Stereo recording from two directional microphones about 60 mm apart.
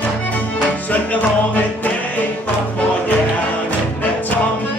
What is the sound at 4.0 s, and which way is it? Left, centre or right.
Music, left.